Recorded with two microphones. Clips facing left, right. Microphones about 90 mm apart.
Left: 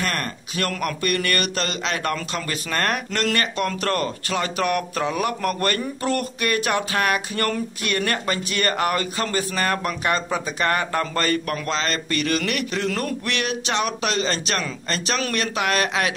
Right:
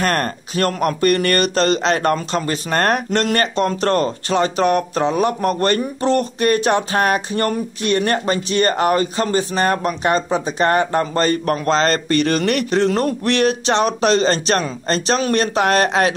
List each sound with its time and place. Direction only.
0.0 s speech: 45° right (ahead or behind)